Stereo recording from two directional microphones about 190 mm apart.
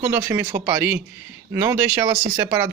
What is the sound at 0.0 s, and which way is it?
Speech, 15° right (ahead or behind).